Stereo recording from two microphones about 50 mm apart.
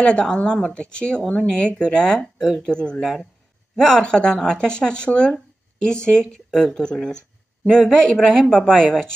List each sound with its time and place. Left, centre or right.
0.0 s speech: centre
2.7 s speech: centre
3.0 s speech: centre
3.7 s speech: centre